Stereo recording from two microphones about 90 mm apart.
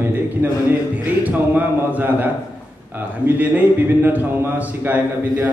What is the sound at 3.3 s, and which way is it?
A man's voice, 20° right (ahead or behind).